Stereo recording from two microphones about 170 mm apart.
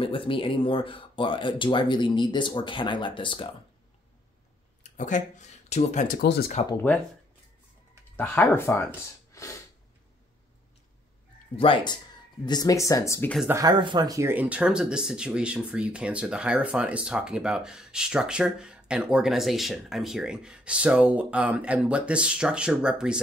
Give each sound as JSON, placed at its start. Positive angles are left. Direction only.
{"t": 0.0, "sound": "speech", "side_deg": 30}
{"t": 4.8, "sound": "speech", "side_deg": 45}
{"t": 6.2, "sound": "speech", "side_deg": 80}
{"t": 8.2, "sound": "speech", "side_deg": 10}
{"t": 9.3, "sound": "a sound", "side_deg": 20}
{"t": 11.5, "sound": "speech", "side_deg": 30}
{"t": 13.5, "sound": "speech", "side_deg": -20}